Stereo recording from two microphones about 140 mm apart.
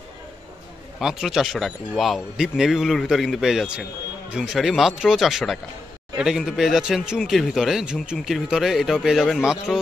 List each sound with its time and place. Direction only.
0.9 s speech: centre (ahead or behind)